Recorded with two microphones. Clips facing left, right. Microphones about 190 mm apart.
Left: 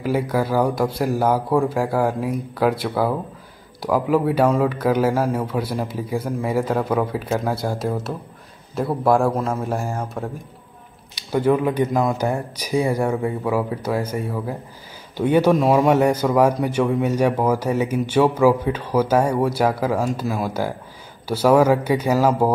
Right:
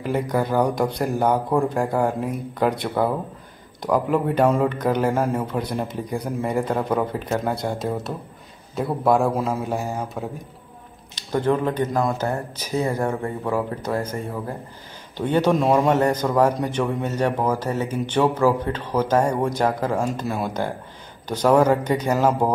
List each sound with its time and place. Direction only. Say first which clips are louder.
0.0 s a man's voice: left 2 dB; 5° left (ahead or behind)